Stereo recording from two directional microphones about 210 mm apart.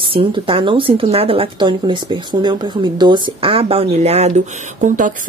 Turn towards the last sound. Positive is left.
turn(degrees=-35)  # may be behind; listen again after turning